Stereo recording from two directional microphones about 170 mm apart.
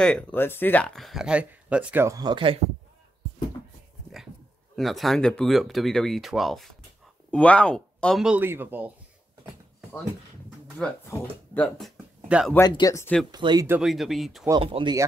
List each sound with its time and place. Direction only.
0.0 s speech: 10° left (ahead or behind); by 2.6 s 30° right (ahead or behind)
4.7 s speech: centre (ahead or behind)
10.8 s speech: 10° left (ahead or behind)
12.3 s speech: 5° right (ahead or behind)
12.5 s speech: 20° left (ahead or behind)
13.3 s speech: 25° right (ahead or behind)
13.7 s speech: 5° right (ahead or behind)
14.6 s speech: 30° right (ahead or behind)